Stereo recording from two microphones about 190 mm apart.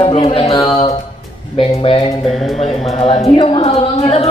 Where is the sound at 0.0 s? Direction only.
30° left (ahead or behind).